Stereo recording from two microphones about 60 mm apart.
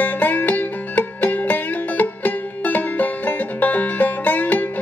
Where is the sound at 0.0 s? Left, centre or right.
Left.